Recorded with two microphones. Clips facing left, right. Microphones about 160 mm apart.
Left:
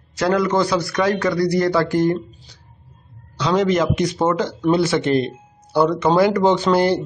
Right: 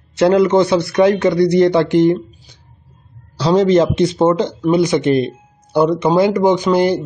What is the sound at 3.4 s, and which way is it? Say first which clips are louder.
A man's voice: right 6 dB; 35° right (ahead or behind).